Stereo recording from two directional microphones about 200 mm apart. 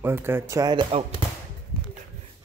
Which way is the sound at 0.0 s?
10° right (ahead or behind).